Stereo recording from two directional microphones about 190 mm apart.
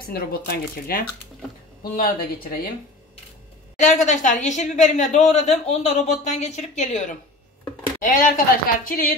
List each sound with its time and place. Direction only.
0.0 s speech: 50° left (ahead or behind)
3.8 s speech: 40° left (ahead or behind)